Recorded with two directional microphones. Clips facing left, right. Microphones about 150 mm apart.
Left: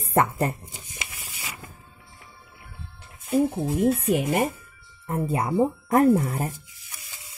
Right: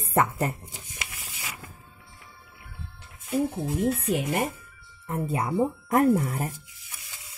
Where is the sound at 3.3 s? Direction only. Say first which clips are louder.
Left 4 dB; 25° left (ahead or behind).